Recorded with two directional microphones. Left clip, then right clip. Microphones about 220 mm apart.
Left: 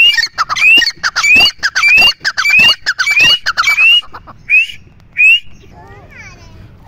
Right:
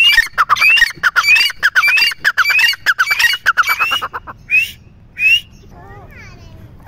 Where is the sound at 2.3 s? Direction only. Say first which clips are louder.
Left 4 dB; 15° right (ahead or behind).